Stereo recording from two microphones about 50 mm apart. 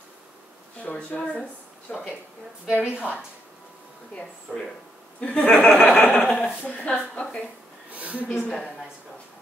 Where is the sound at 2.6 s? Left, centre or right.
Centre.